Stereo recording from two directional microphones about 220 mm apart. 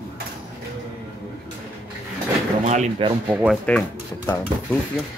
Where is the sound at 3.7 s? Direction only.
5° left (ahead or behind).